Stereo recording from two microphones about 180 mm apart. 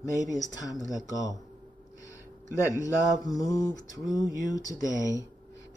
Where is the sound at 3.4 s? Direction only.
20° left (ahead or behind).